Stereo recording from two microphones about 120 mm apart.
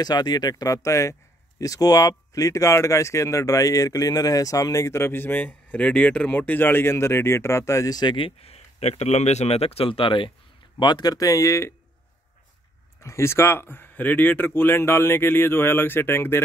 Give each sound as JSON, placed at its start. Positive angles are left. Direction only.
{"t": 0.0, "sound": "speech", "side_deg": 35}
{"t": 8.4, "sound": "speech", "side_deg": 60}
{"t": 10.8, "sound": "speech", "side_deg": 35}
{"t": 13.0, "sound": "speech", "side_deg": 25}